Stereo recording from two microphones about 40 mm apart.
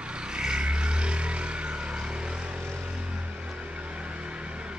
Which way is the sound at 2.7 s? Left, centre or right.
Right.